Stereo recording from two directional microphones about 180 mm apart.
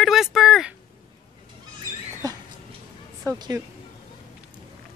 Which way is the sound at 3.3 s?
20° right (ahead or behind).